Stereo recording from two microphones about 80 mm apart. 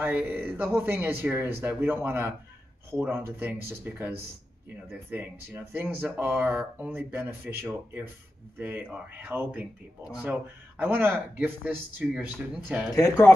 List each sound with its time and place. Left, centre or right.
0.0 s speech: right
12.9 s speech: left